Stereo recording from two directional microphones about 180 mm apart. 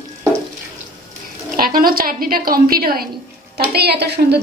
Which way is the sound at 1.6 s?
55° right (ahead or behind).